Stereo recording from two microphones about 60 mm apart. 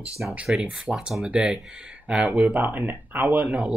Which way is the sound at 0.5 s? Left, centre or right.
Centre.